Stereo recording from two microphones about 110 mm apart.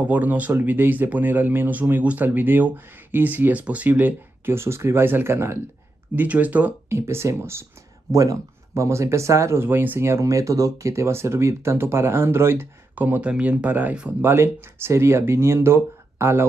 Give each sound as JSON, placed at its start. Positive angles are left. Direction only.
{"t": 0.0, "sound": "speech", "side_deg": -15}